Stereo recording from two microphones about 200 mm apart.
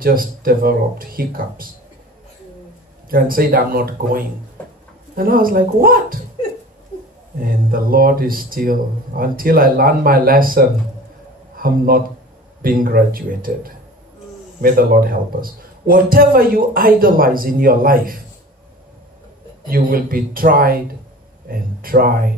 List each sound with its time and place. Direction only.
0.0 s a man's voice: 45° right (ahead or behind)
3.1 s a man's voice: 45° right (ahead or behind)
4.6 s a sound: 10° left (ahead or behind)
5.1 s a man's voice: 45° right (ahead or behind)
7.3 s a man's voice: 45° right (ahead or behind)
19.7 s a man's voice: 45° right (ahead or behind)